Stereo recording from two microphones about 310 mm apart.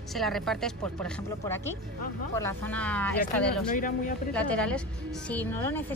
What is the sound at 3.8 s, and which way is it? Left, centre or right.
Speech, left.